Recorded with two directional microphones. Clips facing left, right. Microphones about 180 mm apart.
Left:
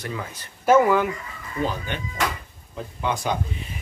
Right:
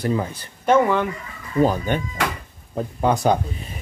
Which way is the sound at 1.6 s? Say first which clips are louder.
Right 8 dB; 45° right (ahead or behind).